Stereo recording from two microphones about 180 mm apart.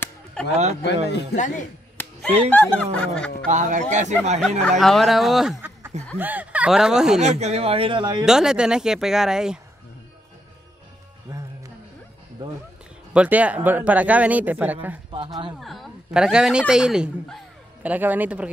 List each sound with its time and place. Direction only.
0.0 s chop: 5° left (ahead or behind)
1.3 s a man's voice: 45° left (ahead or behind)
2.0 s a sound: 10° left (ahead or behind)
2.5 s speech: 5° left (ahead or behind)
3.4 s speech: 45° right (ahead or behind)
4.4 s speech: centre (ahead or behind)
7.2 s speech: 40° right (ahead or behind)
8.3 s speech: 5° right (ahead or behind)
13.1 s speech: 5° right (ahead or behind)
15.1 s speech: 30° right (ahead or behind)
15.6 s speech: centre (ahead or behind)